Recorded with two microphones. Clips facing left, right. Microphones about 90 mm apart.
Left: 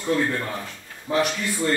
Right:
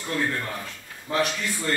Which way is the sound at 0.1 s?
10° left (ahead or behind).